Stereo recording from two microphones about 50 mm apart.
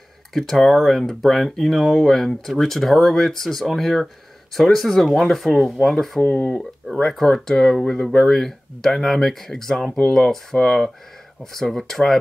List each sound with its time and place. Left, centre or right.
0.3 s speech: centre
6.2 s speech: left
7.0 s speech: centre